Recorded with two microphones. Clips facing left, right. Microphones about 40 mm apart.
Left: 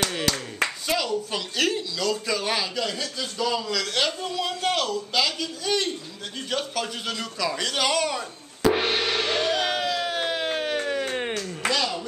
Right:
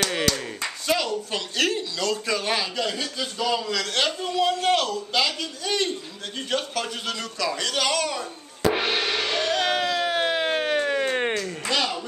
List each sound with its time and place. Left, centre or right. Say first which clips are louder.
0.8 s a man's voice: right 1 dB; centre
6.3 s a sound: right 1 dB; centre; by 11.5 s right
11.7 s speech: right 2 dB; right